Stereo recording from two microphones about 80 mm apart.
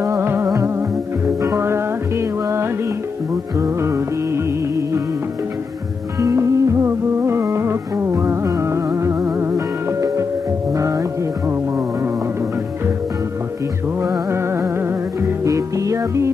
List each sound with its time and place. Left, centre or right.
0.0 s music: right
6.1 s music: right
14.3 s music: right
15.4 s music: right